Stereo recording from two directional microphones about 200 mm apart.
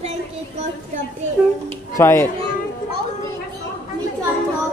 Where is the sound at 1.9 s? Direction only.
15° left (ahead or behind).